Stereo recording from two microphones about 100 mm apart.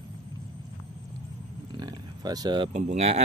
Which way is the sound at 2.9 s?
90° right.